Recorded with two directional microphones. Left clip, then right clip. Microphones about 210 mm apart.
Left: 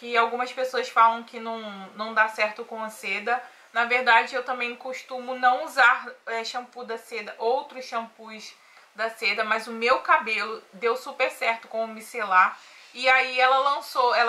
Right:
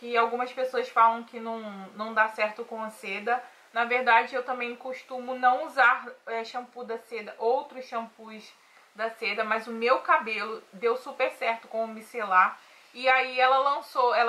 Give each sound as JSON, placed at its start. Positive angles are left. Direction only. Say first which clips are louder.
{"t": 0.0, "sound": "speech", "louder": "left 2 dB", "side_deg": -5}